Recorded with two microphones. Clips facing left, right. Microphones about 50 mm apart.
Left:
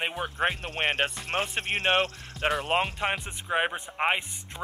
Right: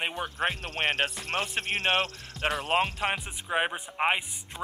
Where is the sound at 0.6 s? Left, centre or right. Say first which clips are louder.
Left 1 dB; left.